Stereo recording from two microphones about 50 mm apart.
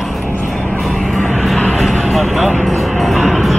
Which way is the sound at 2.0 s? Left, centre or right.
Centre.